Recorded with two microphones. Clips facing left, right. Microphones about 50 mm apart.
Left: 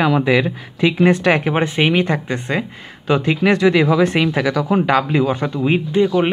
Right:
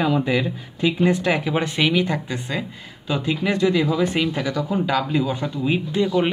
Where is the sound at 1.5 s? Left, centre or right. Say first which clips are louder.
Left 4 dB; left.